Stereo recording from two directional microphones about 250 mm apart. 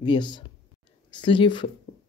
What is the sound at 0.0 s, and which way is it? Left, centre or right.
Speech, centre.